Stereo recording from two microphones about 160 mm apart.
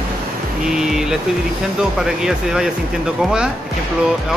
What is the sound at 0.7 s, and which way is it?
Speech, 5° right (ahead or behind).